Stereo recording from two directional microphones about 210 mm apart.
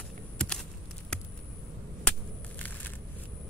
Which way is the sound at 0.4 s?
5° left (ahead or behind).